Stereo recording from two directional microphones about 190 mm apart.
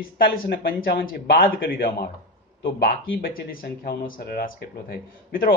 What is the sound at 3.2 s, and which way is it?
Speech, 50° left (ahead or behind).